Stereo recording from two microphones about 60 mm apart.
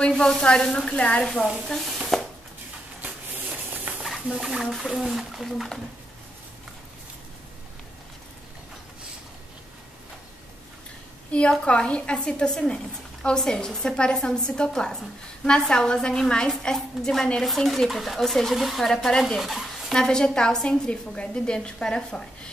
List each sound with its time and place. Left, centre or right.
0.0 s a woman's voice: centre
1.7 s speech: centre
3.0 s a sound: right
4.0 s speech: centre
11.3 s a woman's voice: centre
19.9 s a woman's voice: centre